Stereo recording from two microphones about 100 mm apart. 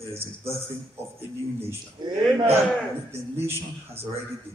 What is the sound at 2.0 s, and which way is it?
Speech, 45° right (ahead or behind).